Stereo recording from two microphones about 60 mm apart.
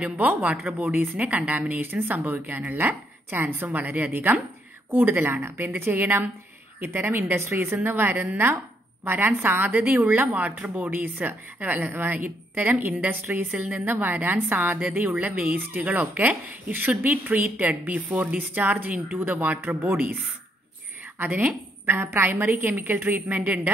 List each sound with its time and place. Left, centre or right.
0.0 s a woman's voice: centre
21.2 s a woman's voice: right
23.2 s speech: right